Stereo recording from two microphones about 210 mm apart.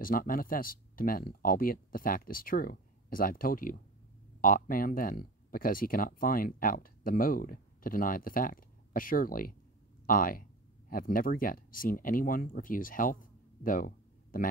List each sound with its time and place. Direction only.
0.0 s speech: 40° left (ahead or behind)